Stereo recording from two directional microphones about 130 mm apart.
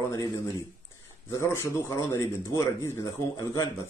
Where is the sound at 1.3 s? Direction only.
25° left (ahead or behind).